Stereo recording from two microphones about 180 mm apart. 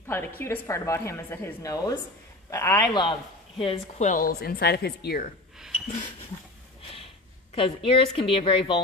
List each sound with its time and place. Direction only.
0.1 s a woman's voice: 10° left (ahead or behind); by 4.3 s 40° left (ahead or behind)
4.3 s speech: 60° left (ahead or behind)
7.5 s speech: 30° left (ahead or behind)